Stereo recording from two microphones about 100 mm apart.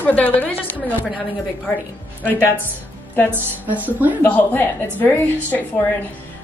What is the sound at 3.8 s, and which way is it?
Speech, 15° right (ahead or behind).